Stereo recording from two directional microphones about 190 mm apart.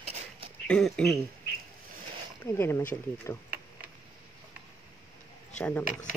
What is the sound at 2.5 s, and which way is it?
Speech, 10° left (ahead or behind).